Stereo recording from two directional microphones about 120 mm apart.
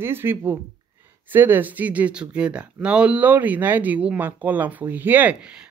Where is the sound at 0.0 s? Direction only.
20° right (ahead or behind).